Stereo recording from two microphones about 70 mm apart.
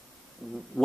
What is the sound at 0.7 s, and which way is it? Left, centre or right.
Speech, centre.